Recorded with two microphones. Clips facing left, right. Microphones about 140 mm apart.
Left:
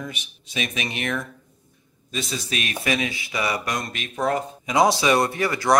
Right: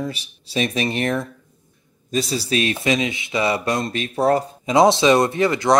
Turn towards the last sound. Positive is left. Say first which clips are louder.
# right 3 dB
turn(degrees=-20)  # may be behind; listen again after turning